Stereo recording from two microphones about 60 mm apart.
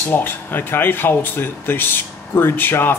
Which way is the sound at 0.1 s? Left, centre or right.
Left.